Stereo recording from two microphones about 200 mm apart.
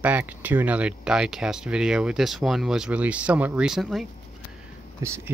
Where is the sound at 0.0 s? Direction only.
5° right (ahead or behind).